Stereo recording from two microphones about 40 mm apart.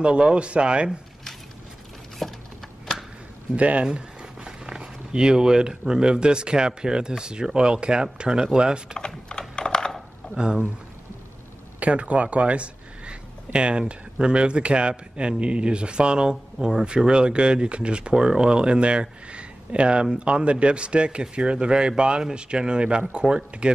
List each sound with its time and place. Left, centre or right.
0.0 s speech: right
2.2 s a sound: centre
3.5 s speech: right
9.6 s computer keyboard: centre
10.3 s speech: right
11.8 s speech: right